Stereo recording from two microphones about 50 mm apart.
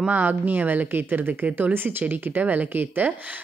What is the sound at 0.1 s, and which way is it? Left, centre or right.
A woman's voice, right.